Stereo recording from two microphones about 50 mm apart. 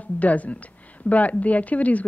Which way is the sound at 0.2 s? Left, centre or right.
Left.